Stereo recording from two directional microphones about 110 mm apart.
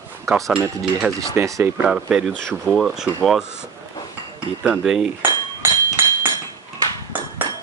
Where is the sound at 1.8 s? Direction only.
5° right (ahead or behind).